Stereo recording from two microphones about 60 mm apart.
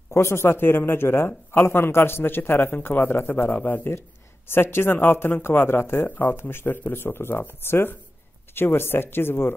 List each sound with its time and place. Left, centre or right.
0.1 s speech: left
4.5 s speech: left